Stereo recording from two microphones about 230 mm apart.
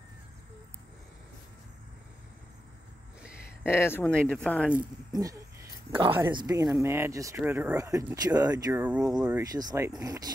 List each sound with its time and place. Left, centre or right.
3.2 s a sound: centre
3.6 s speech: centre
5.9 s speech: right